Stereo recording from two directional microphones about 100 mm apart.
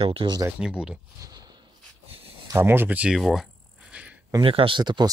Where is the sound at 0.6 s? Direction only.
10° right (ahead or behind).